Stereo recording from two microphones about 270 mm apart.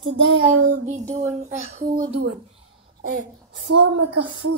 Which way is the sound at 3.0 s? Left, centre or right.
Right.